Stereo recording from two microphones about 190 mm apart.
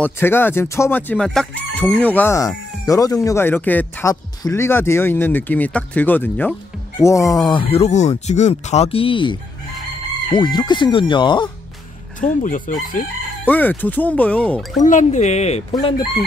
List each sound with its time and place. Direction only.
0.0 s speech: 10° left (ahead or behind)
12.2 s speech: 45° left (ahead or behind)
13.5 s speech: 10° left (ahead or behind)
14.8 s speech: 40° left (ahead or behind)